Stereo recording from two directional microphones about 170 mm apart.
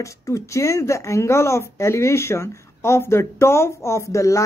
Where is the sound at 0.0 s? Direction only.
20° left (ahead or behind).